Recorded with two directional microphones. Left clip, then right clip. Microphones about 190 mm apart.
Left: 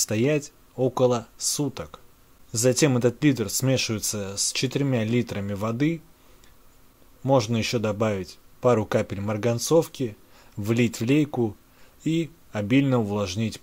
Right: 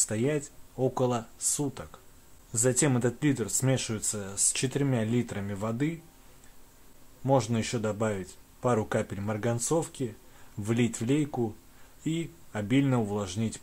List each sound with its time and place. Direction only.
0.0 s speech: 30° left (ahead or behind)
7.2 s speech: 25° left (ahead or behind)